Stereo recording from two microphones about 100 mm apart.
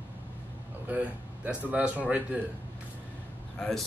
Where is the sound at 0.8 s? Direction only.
15° right (ahead or behind).